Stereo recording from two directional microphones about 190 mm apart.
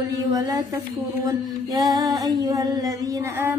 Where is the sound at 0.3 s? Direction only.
20° right (ahead or behind).